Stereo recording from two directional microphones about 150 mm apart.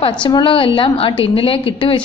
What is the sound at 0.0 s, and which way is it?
A woman's voice, 30° left (ahead or behind).